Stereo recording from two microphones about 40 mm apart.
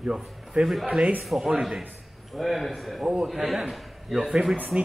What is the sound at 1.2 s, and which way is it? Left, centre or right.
A man's voice, centre.